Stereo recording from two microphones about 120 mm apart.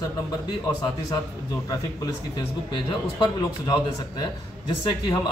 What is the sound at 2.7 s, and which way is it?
A man's voice, 35° left (ahead or behind).